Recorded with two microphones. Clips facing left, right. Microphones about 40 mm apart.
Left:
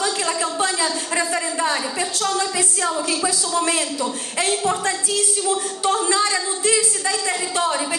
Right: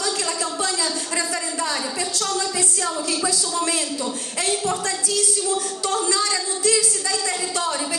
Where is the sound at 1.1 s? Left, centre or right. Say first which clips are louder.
Left 4 dB; left.